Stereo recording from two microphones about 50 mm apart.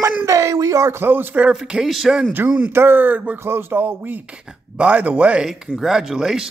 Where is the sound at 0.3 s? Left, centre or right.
Right.